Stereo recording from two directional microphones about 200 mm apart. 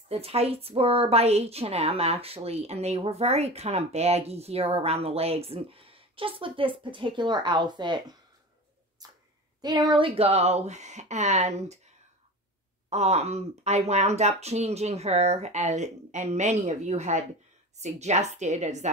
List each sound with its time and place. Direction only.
0.1 s a woman's voice: 30° right (ahead or behind)
9.6 s speech: 20° right (ahead or behind)
12.9 s speech: 30° right (ahead or behind)